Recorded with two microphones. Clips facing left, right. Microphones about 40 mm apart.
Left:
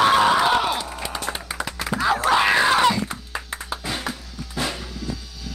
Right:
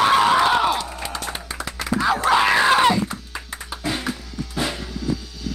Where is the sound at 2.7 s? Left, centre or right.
Centre.